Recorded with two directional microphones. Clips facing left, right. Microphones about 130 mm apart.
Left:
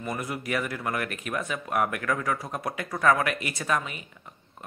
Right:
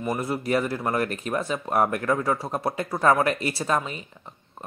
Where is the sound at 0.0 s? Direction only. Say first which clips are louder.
Right 5 dB; 30° right (ahead or behind).